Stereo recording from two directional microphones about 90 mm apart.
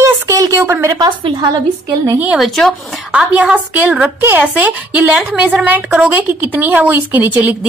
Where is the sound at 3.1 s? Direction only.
10° right (ahead or behind).